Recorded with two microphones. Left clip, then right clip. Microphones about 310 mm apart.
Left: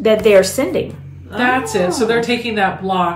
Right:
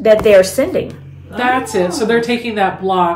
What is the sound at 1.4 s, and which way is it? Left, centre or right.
Speech, right.